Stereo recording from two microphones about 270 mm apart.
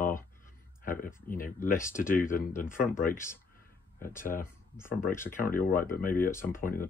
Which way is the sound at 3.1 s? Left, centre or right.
Centre.